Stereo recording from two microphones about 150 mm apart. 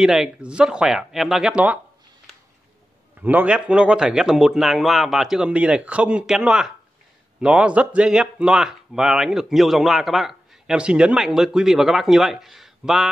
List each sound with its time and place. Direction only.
0.0 s speech: 5° right (ahead or behind)
3.2 s speech: 10° right (ahead or behind)